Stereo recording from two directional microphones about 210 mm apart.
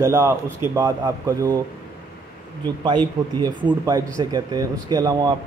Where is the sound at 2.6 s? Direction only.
20° right (ahead or behind).